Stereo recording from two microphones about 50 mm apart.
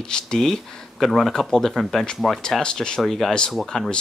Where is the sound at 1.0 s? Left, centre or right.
Centre.